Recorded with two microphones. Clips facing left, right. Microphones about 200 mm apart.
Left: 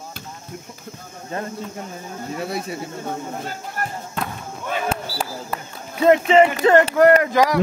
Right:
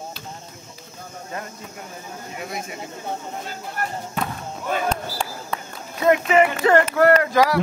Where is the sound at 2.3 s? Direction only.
35° left (ahead or behind).